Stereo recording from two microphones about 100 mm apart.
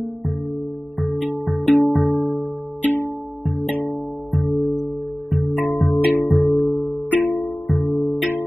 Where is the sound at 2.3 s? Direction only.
15° left (ahead or behind).